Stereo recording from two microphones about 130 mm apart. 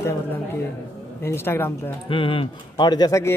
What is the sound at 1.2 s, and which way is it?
Speech, 15° left (ahead or behind).